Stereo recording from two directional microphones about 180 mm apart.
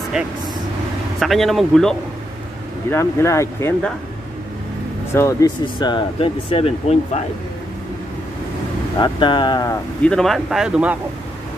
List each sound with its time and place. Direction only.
0.2 s speech: 5° right (ahead or behind)
2.9 s speech: 15° left (ahead or behind)
5.1 s speech: 15° left (ahead or behind)
5.8 s speech: 25° left (ahead or behind)
9.0 s speech: 25° left (ahead or behind)
10.0 s speech: centre (ahead or behind)